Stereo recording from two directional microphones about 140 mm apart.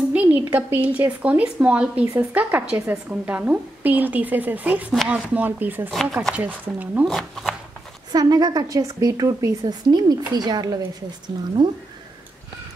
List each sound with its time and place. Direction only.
0.1 s a woman's voice: 10° right (ahead or behind)
5.9 s speech: centre (ahead or behind)
6.3 s a woman's voice: 10° right (ahead or behind)
7.1 s speech: centre (ahead or behind)
8.1 s a woman's voice: 30° right (ahead or behind)